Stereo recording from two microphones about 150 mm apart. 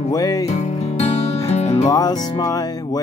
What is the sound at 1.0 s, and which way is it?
Music, 45° left (ahead or behind).